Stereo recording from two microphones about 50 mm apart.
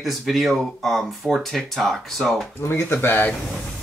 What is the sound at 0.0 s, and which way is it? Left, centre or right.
Speech, centre.